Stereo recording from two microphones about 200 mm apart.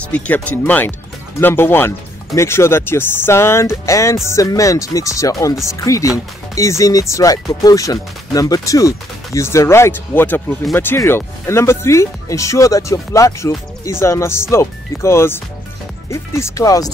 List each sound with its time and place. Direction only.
0.0 s speech: 5° left (ahead or behind)